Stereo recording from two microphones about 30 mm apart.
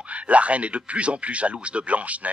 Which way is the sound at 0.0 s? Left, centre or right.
Right.